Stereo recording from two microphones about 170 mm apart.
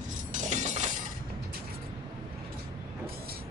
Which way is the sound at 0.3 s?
45° right (ahead or behind).